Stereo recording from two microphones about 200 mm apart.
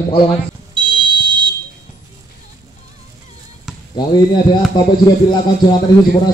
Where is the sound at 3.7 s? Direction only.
Centre (ahead or behind).